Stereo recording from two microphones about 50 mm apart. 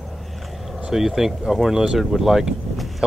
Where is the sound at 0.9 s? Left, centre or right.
Centre.